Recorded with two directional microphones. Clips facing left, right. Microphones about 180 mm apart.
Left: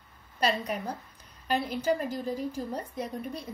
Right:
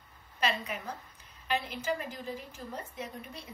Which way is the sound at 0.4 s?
35° left (ahead or behind).